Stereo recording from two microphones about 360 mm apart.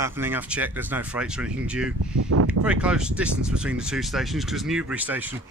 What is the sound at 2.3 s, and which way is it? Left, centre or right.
Speech, right.